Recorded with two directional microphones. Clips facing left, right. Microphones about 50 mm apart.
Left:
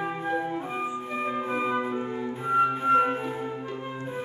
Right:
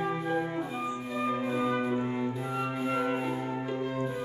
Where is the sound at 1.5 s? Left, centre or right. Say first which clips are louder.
Left 1 dB; left.